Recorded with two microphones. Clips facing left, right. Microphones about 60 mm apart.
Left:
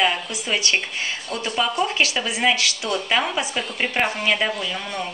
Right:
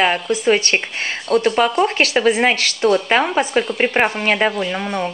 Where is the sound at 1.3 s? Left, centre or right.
Right.